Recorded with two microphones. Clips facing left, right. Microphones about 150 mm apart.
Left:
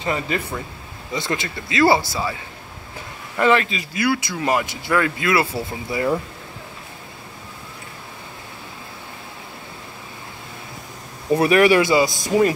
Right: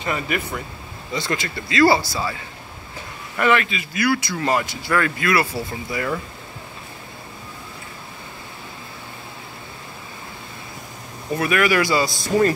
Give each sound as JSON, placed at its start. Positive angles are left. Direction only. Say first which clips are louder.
{"t": 0.0, "sound": "speech", "louder": "left 1 dB", "side_deg": 25}
{"t": 3.3, "sound": "speech", "louder": "left 2 dB", "side_deg": 30}
{"t": 11.3, "sound": "speech", "louder": "left 5 dB", "side_deg": 30}